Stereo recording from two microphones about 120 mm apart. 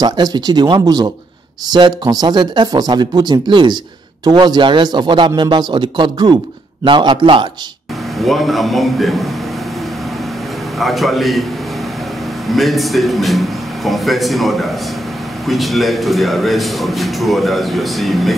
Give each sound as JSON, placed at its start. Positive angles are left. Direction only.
{"t": 0.0, "sound": "a man's voice", "side_deg": -35}
{"t": 8.2, "sound": "a man's voice", "side_deg": 0}
{"t": 10.8, "sound": "a man's voice", "side_deg": 0}
{"t": 12.5, "sound": "a man's voice", "side_deg": 0}